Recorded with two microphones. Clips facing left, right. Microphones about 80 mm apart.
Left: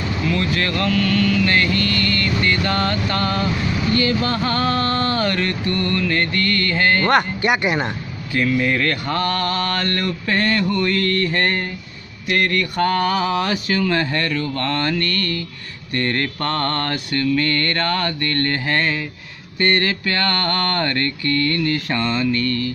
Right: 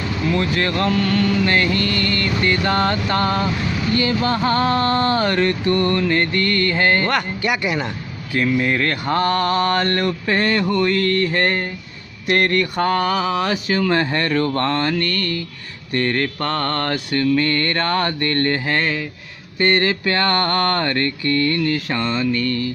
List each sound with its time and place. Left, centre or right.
0.3 s a sound: right
7.1 s speech: left
8.3 s mantra: centre
12.3 s speech: right
12.7 s mantra: centre
13.7 s a sound: right
14.3 s speech: right
14.7 s a sound: centre
16.1 s mantra: centre
19.6 s mantra: centre